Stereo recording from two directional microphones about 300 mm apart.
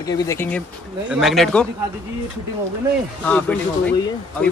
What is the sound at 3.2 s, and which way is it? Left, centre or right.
Speech, centre.